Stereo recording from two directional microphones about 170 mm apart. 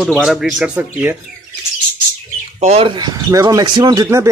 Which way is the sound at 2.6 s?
35° right (ahead or behind).